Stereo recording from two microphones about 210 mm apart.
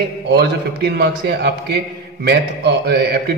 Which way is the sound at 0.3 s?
50° right (ahead or behind).